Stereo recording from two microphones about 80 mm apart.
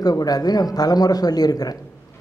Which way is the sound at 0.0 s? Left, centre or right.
Left.